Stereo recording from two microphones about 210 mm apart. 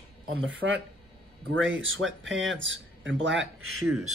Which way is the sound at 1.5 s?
65° right (ahead or behind).